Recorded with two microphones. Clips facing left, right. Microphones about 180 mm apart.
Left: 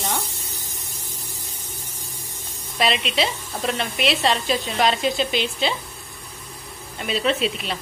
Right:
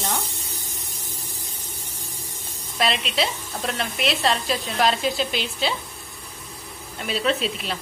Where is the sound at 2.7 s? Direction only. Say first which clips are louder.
Left 2 dB; centre (ahead or behind).